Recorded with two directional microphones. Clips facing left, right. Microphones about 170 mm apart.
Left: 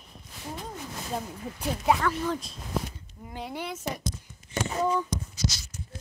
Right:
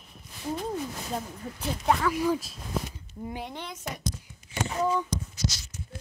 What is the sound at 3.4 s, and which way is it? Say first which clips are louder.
Speech: left 3 dB; 10° left (ahead or behind).